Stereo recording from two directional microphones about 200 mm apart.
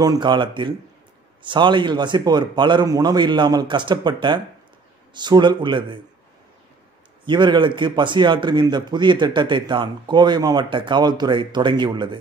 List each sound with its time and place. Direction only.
0.0 s a man's voice: 20° right (ahead or behind)
7.2 s a man's voice: 25° right (ahead or behind)